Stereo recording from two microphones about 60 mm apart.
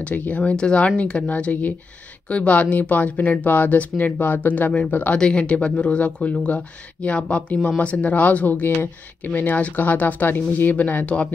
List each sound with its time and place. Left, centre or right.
0.1 s speech: left
5.1 s speech: centre